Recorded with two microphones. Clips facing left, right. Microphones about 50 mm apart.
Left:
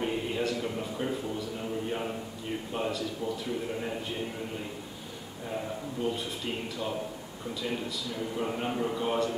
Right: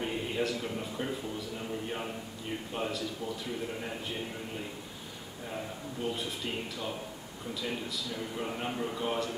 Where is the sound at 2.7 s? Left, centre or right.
Centre.